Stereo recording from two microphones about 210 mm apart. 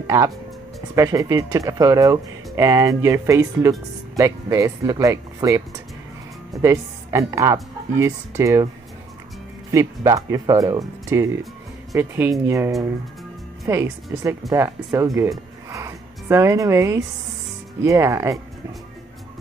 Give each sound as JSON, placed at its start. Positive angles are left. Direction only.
{"t": 0.0, "sound": "speech", "side_deg": -15}
{"t": 6.6, "sound": "speech", "side_deg": -15}
{"t": 9.7, "sound": "speech", "side_deg": -15}